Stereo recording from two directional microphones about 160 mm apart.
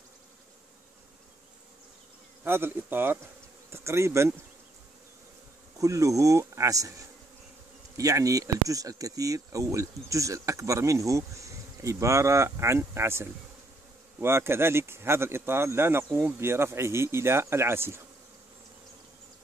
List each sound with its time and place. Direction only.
2.4 s speech: 15° right (ahead or behind)
5.8 s speech: 20° right (ahead or behind)
8.0 s speech: 20° right (ahead or behind)